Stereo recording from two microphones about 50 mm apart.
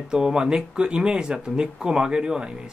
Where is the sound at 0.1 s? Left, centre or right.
Centre.